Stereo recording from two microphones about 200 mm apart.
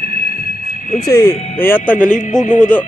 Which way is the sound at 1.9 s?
40° left (ahead or behind).